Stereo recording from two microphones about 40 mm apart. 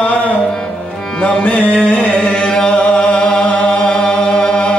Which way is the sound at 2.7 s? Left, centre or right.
Left.